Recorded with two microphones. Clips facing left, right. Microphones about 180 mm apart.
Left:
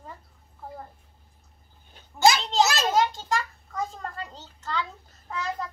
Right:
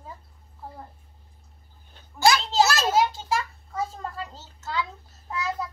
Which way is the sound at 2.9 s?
5° right (ahead or behind).